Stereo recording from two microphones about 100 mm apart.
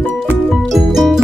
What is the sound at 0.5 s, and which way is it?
Music, centre (ahead or behind).